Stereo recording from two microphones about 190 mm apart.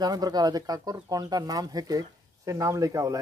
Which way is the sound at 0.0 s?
20° right (ahead or behind).